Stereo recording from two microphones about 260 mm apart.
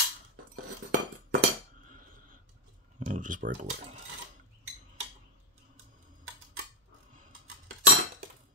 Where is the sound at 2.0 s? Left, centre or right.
Right.